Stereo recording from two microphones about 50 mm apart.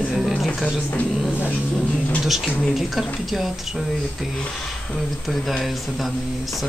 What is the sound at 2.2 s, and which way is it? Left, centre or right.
A woman's voice, centre.